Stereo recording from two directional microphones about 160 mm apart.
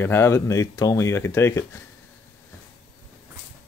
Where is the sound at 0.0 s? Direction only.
15° left (ahead or behind).